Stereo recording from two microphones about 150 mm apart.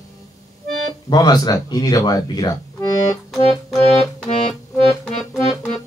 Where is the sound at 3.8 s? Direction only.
45° left (ahead or behind).